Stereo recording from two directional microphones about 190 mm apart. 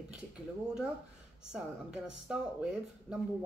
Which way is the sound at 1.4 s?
5° right (ahead or behind).